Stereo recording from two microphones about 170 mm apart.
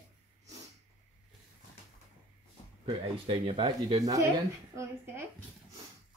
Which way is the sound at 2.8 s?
30° right (ahead or behind).